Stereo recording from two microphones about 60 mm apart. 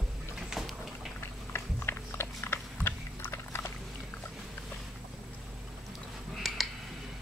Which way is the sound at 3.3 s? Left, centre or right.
Left.